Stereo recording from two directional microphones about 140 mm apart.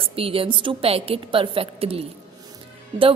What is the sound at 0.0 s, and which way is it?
A woman's voice, 40° right (ahead or behind).